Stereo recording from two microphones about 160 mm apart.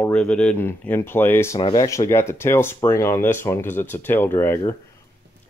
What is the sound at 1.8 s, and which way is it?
Speech, 20° left (ahead or behind).